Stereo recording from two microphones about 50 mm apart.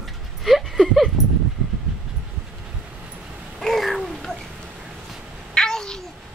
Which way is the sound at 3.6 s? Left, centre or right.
Centre.